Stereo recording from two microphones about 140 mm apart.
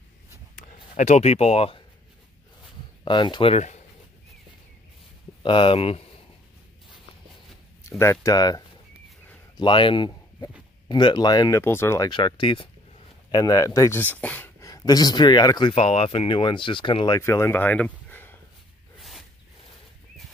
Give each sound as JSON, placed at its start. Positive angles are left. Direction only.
{"t": 0.7, "sound": "speech", "side_deg": 60}
{"t": 3.1, "sound": "speech", "side_deg": 35}
{"t": 3.5, "sound": "speech", "side_deg": 55}
{"t": 5.4, "sound": "speech", "side_deg": 35}
{"t": 8.0, "sound": "speech", "side_deg": 20}
{"t": 9.6, "sound": "speech", "side_deg": 35}
{"t": 12.1, "sound": "speech", "side_deg": 35}
{"t": 13.3, "sound": "speech", "side_deg": 25}
{"t": 14.1, "sound": "speech", "side_deg": 10}
{"t": 14.6, "sound": "speech", "side_deg": 25}
{"t": 15.7, "sound": "speech", "side_deg": 40}
{"t": 17.2, "sound": "speech", "side_deg": 20}
{"t": 18.9, "sound": "zipper", "side_deg": 0}